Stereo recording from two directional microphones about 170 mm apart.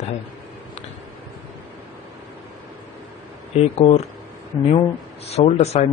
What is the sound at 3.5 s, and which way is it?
Speech, 40° left (ahead or behind).